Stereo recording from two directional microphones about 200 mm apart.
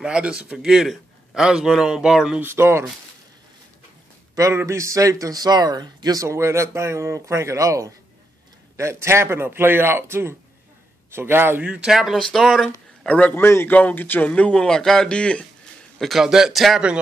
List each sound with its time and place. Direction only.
0.0 s a man's voice: 5° right (ahead or behind)
4.4 s a man's voice: 15° right (ahead or behind)